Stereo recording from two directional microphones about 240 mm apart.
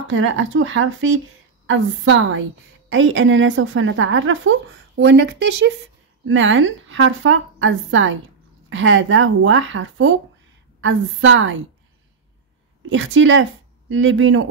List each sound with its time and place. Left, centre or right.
0.1 s a woman's voice: right
12.9 s speech: right